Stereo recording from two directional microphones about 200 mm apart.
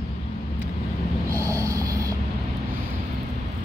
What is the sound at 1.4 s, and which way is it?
Snort, 15° right (ahead or behind).